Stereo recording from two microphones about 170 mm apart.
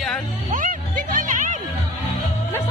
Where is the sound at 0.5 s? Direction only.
50° right (ahead or behind).